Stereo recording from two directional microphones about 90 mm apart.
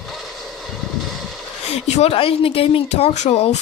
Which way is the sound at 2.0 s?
90° left.